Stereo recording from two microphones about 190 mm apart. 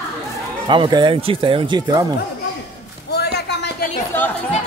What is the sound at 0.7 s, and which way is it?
Speech, 25° right (ahead or behind).